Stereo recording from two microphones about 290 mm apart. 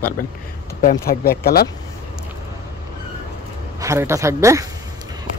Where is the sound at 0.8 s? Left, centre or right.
Left.